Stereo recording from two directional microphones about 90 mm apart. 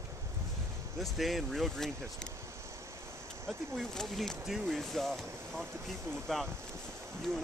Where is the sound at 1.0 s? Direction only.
Centre (ahead or behind).